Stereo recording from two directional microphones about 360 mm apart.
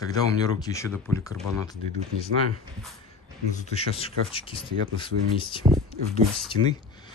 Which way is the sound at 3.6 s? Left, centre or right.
Centre.